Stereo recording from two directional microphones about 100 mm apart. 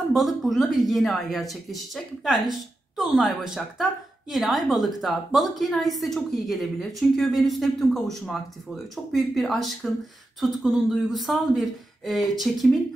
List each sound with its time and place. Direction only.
0.1 s a woman's voice: centre (ahead or behind)